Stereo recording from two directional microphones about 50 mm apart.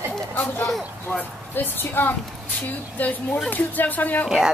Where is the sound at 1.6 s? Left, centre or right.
Left.